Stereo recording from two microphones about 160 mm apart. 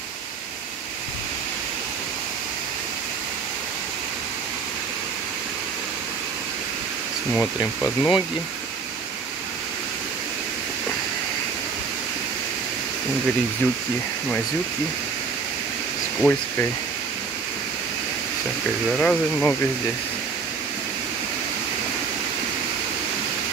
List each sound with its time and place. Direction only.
7.3 s speech: 10° left (ahead or behind)
16.2 s speech: 5° left (ahead or behind)
18.9 s speech: 5° left (ahead or behind)